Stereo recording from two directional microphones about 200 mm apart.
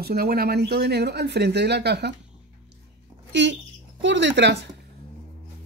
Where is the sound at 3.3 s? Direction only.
65° right (ahead or behind).